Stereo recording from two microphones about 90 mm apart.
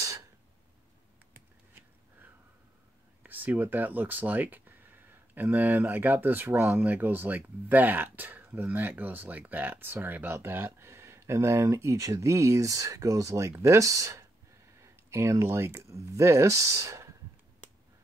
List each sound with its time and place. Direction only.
3.3 s speech: 20° right (ahead or behind); by 17.1 s 35° right (ahead or behind)